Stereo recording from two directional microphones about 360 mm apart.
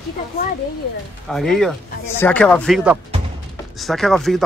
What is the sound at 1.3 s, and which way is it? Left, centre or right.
Speech, centre.